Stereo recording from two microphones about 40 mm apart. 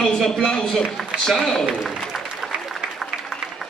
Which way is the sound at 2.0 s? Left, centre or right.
Centre.